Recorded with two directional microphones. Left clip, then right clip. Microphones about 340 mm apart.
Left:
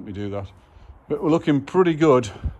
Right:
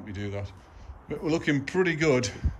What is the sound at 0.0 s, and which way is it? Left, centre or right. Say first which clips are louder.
A man's voice: left 6 dB; centre.